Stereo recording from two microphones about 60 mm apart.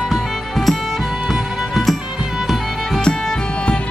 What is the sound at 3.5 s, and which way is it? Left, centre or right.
Music, centre.